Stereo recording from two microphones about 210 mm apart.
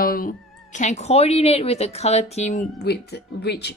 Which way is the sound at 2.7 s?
50° left (ahead or behind).